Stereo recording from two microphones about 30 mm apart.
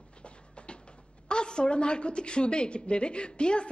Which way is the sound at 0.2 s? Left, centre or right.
Left.